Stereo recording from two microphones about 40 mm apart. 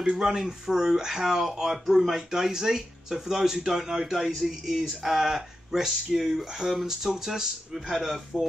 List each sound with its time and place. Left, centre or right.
0.0 s speech: centre